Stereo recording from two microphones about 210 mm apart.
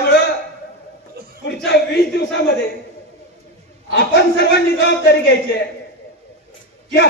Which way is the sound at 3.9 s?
50° left (ahead or behind).